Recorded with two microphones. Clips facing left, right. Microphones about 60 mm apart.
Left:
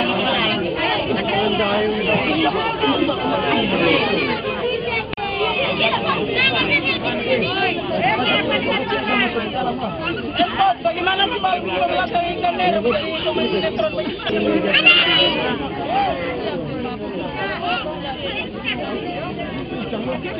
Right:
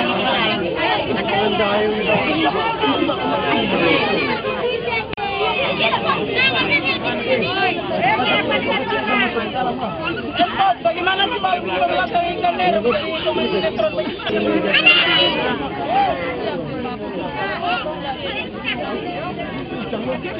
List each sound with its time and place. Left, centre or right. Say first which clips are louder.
0.0 s chatter: right 1 dB; centre
1.1 s chatter: right 1 dB; centre
1.8 s speech: right 1 dB; centre
2.6 s chatter: right 1 dB; centre
5.2 s chatter: right 1 dB; centre
10.4 s speech: right 1 dB; centre
15.3 s a sound: right 1 dB; centre